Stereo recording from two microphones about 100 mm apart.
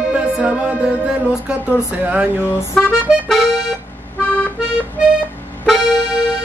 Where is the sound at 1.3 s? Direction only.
10° right (ahead or behind).